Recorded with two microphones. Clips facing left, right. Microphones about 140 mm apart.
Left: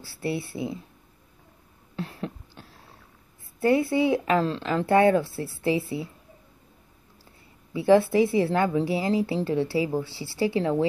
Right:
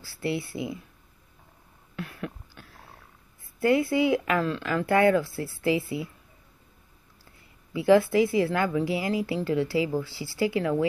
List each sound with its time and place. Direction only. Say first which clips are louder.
0.0 s speech: even; 30° left (ahead or behind)
2.0 s a sound: left 2 dB; 30° left (ahead or behind)
3.5 s speech: left 1 dB; 30° left (ahead or behind)
7.7 s speech: left 1 dB; 30° left (ahead or behind)